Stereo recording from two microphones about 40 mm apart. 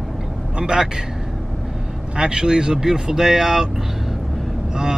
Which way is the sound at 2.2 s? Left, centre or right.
Centre.